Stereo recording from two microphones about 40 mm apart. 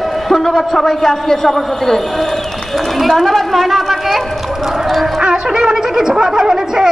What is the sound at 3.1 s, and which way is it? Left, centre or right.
A woman's voice, centre.